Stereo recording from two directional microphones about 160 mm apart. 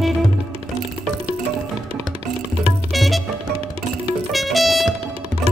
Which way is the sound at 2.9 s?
Centre (ahead or behind).